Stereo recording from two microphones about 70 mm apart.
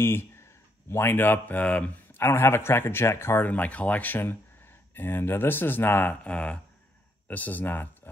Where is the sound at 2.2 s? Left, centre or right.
Left.